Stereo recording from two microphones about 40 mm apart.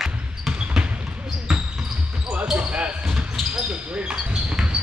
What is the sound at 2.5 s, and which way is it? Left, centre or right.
Basketball bounce, right.